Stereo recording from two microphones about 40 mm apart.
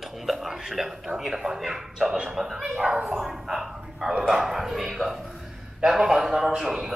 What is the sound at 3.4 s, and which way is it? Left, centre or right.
Speech, centre.